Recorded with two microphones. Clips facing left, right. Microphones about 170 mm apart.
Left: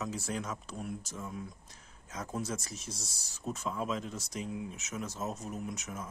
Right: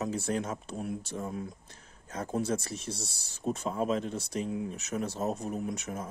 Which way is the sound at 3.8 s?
55° right (ahead or behind).